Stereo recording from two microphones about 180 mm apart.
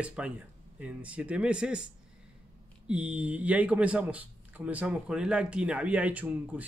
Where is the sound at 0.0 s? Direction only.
5° right (ahead or behind).